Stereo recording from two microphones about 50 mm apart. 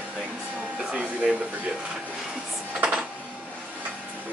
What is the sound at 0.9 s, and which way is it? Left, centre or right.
Speech, right.